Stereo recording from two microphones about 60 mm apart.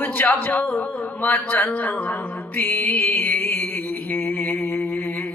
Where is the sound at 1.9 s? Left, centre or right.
Left.